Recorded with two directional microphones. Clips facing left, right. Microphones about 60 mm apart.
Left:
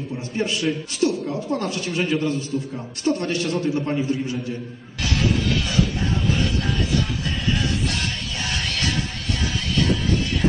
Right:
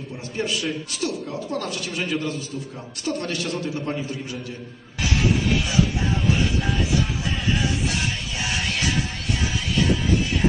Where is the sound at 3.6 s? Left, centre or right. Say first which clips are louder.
Left 5 dB; left.